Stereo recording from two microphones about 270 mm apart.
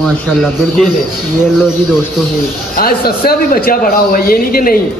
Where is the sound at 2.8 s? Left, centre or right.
Left.